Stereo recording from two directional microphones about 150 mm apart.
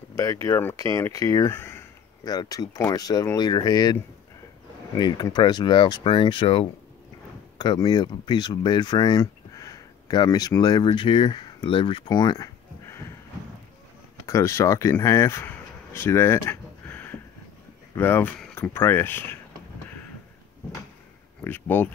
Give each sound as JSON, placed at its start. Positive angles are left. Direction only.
{"t": 0.1, "sound": "speech", "side_deg": 20}
{"t": 14.2, "sound": "speech", "side_deg": 20}
{"t": 21.5, "sound": "speech", "side_deg": 15}